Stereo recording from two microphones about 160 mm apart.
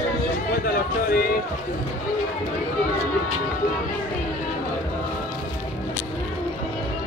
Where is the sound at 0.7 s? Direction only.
75° left (ahead or behind).